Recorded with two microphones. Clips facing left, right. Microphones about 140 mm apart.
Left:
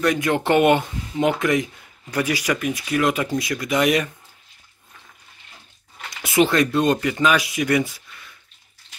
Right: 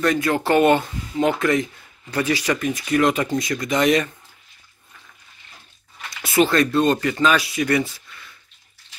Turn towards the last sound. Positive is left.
turn(degrees=15)  # may be behind; listen again after turning